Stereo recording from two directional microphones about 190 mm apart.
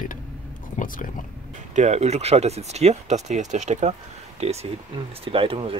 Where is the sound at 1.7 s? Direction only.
35° right (ahead or behind).